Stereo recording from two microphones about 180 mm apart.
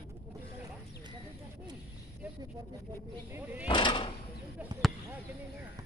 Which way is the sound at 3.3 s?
10° right (ahead or behind).